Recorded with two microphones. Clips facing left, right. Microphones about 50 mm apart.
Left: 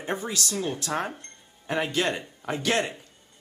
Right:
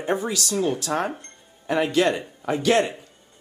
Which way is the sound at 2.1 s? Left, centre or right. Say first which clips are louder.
Right 6 dB; right.